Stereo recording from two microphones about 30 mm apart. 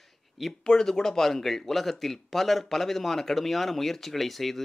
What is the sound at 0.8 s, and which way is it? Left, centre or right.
A man's voice, centre.